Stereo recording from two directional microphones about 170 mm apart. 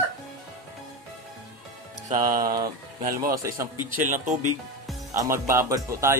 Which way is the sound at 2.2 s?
55° right (ahead or behind).